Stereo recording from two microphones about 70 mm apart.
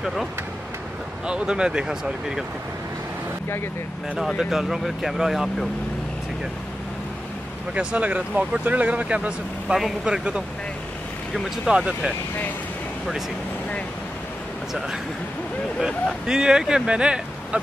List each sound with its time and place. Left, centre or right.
0.0 s speech: centre
1.2 s speech: centre
4.4 s speech: centre
7.7 s speech: centre
9.8 s speech: centre
16.3 s speech: centre